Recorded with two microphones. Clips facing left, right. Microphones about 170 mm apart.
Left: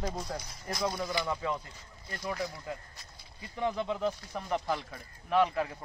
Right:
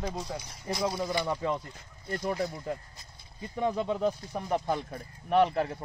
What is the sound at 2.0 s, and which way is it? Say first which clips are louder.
Speech: right 6 dB; 50° right (ahead or behind).